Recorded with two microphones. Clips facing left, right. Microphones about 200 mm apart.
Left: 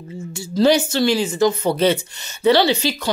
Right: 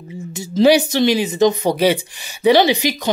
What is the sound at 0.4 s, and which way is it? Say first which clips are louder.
Speech: right 3 dB; 15° right (ahead or behind).